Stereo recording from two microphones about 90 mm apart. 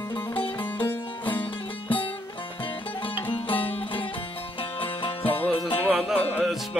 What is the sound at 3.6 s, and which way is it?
Music, 85° left.